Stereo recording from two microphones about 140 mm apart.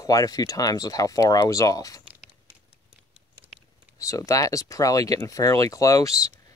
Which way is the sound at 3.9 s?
25° left (ahead or behind).